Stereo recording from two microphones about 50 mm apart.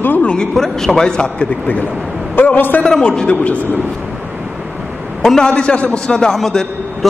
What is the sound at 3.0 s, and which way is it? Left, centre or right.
Speech, centre.